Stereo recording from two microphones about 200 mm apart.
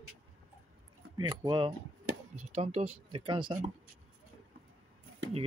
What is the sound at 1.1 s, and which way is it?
Speech, 20° right (ahead or behind).